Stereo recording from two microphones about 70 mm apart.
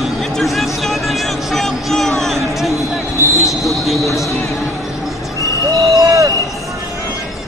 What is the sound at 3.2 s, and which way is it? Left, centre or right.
Basketball bounce, right.